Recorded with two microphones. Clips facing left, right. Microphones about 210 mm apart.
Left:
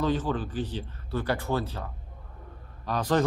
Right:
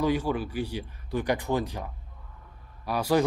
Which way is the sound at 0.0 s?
10° right (ahead or behind).